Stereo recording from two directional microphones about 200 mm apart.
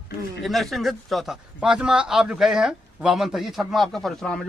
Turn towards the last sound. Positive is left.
turn(degrees=5)  # may be behind; listen again after turning